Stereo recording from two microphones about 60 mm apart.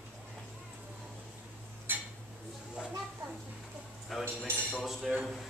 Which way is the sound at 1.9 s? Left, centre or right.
Right.